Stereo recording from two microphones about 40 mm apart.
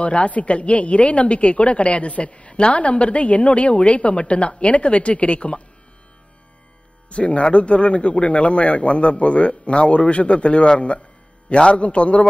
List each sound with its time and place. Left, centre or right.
0.0 s a woman's voice: left
7.1 s a woman's voice: left